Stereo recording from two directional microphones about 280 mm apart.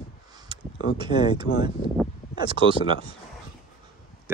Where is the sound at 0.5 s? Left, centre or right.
Centre.